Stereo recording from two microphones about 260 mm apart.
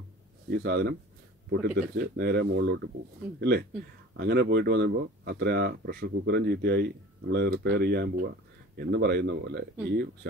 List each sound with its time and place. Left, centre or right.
0.5 s speech: right